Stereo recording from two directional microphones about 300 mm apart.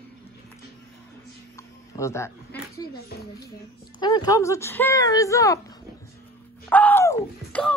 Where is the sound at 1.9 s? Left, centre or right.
Centre.